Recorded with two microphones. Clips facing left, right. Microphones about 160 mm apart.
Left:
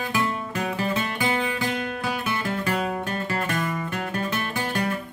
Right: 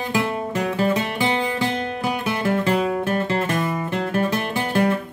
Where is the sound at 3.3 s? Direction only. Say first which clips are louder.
Right 4 dB; 25° right (ahead or behind).